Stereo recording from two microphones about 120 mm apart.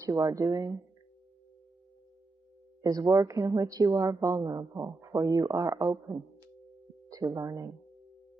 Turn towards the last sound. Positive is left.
turn(degrees=-25)  # may be behind; listen again after turning